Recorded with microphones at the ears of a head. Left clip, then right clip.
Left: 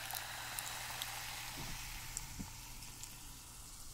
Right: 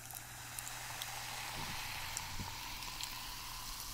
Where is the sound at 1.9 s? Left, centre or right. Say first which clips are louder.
Right 6 dB; right.